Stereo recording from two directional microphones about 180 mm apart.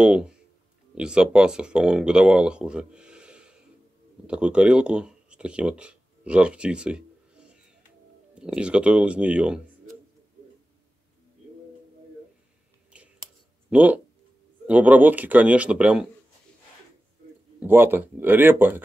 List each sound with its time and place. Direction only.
0.0 s speech: 5° right (ahead or behind)
12.9 s a sound: 5° right (ahead or behind)
13.7 s speech: 5° right (ahead or behind)
17.6 s speech: 10° right (ahead or behind)